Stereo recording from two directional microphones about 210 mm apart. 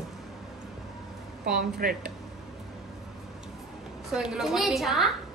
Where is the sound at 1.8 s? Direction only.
40° right (ahead or behind).